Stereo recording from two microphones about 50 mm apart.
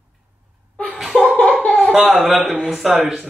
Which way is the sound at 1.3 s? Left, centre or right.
Left.